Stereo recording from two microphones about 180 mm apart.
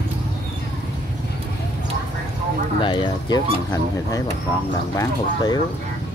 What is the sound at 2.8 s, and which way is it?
Speech, 25° left (ahead or behind).